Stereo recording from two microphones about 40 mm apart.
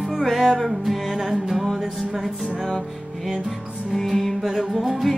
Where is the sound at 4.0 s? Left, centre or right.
Centre.